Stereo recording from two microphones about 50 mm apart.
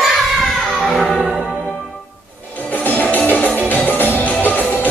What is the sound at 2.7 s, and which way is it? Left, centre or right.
Music, left.